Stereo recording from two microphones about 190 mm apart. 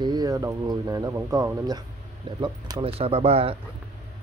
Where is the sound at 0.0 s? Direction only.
20° right (ahead or behind).